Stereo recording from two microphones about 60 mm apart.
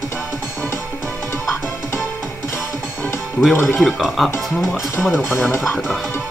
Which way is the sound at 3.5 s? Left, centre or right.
Left.